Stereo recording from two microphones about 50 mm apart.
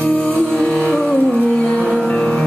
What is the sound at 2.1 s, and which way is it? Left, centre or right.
Music, centre.